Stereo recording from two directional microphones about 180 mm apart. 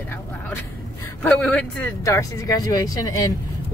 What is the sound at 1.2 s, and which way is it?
Speech, 5° left (ahead or behind).